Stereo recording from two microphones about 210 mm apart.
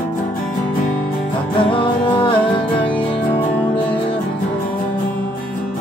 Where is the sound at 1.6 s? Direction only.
25° left (ahead or behind).